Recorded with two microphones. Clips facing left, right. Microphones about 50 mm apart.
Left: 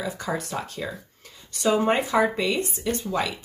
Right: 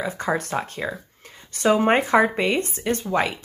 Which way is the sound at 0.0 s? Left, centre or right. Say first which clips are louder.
Right 4 dB; right.